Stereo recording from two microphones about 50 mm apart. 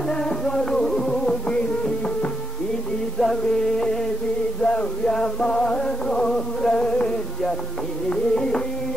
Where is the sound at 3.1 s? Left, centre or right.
Centre.